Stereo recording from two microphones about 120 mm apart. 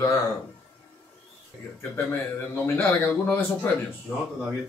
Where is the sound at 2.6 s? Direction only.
15° left (ahead or behind).